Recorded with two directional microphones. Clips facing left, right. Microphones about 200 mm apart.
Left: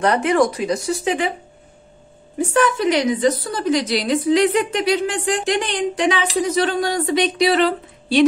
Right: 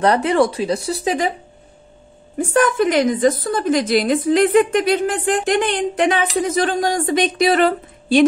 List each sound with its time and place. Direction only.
0.0 s speech: 30° right (ahead or behind)
2.3 s a woman's voice: 50° right (ahead or behind)